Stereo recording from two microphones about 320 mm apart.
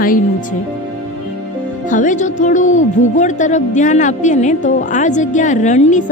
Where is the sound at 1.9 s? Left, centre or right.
Left.